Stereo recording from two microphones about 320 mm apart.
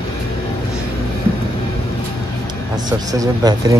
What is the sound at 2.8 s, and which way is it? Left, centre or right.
Speech, centre.